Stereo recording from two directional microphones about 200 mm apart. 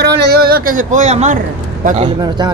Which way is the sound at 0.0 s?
55° right (ahead or behind).